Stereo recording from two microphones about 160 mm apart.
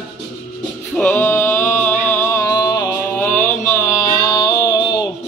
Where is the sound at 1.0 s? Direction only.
10° left (ahead or behind); by 5.0 s 25° left (ahead or behind).